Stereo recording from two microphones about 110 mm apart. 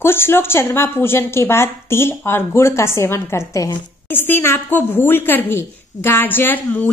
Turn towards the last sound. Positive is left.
turn(degrees=20)  # may be behind; listen again after turning